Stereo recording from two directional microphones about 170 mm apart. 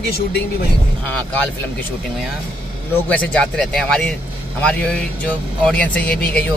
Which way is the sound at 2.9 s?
10° left (ahead or behind).